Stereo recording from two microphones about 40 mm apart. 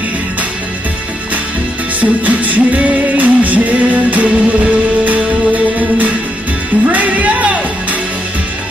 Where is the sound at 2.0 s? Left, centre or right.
Right.